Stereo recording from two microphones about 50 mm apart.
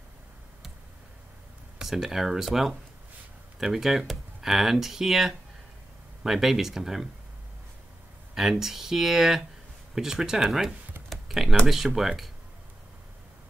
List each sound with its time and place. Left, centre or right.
1.8 s speech: centre
8.4 s speech: centre
11.2 s computer keyboard: centre
11.6 s speech: centre